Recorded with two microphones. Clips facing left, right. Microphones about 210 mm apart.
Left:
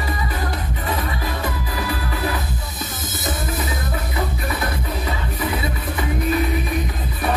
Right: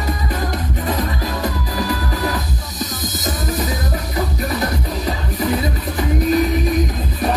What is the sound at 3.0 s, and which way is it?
Music, 35° right (ahead or behind).